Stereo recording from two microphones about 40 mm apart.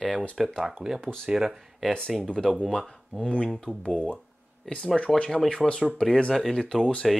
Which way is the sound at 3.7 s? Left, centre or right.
Left.